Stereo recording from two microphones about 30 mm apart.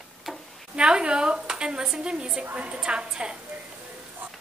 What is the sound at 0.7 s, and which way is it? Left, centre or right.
A woman's voice, right.